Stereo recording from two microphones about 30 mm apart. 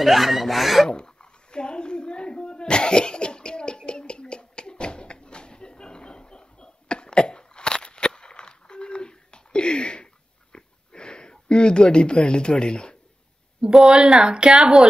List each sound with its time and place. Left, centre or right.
0.0 s speech: centre
0.8 s a sound: left
13.7 s speech: centre